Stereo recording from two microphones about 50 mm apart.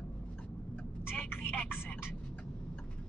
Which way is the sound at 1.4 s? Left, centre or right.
Left.